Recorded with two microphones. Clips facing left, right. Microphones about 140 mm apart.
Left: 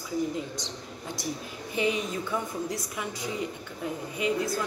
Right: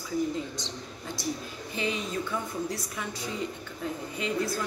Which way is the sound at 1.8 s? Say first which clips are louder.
Left 3 dB; 15° left (ahead or behind).